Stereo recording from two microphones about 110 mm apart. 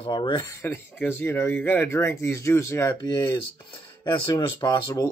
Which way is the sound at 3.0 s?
40° left (ahead or behind).